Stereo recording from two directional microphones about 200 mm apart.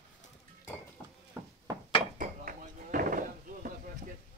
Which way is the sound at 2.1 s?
45° right (ahead or behind).